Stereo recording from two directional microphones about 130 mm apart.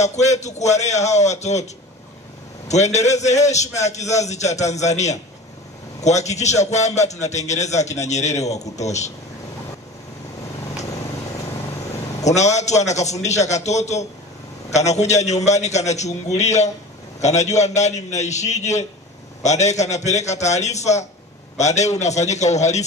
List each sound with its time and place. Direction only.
0.0 s a man's voice: 60° left (ahead or behind)
2.7 s a man's voice: 60° left (ahead or behind)
12.3 s a man's voice: 60° left (ahead or behind)